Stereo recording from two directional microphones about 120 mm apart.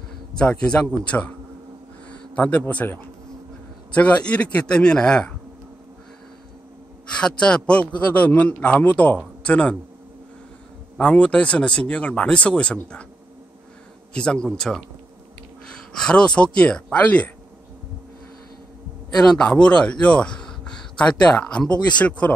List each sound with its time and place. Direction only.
0.4 s a man's voice: 10° left (ahead or behind)
7.2 s a man's voice: 5° left (ahead or behind)
11.0 s a man's voice: 10° left (ahead or behind)
14.1 s a man's voice: 5° left (ahead or behind)
15.9 s a man's voice: 5° left (ahead or behind)
19.1 s a man's voice: 5° left (ahead or behind)